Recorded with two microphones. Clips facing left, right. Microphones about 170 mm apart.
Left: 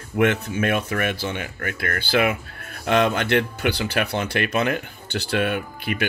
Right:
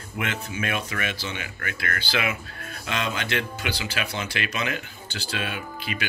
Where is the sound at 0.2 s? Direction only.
60° left (ahead or behind).